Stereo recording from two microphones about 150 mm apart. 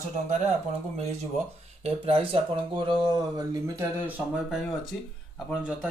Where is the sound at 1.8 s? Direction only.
40° right (ahead or behind).